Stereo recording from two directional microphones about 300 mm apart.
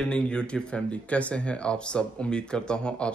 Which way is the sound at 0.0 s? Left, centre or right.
Centre.